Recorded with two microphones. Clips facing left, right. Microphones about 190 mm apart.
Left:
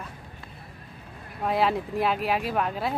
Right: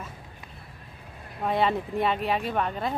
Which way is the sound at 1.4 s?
Centre (ahead or behind).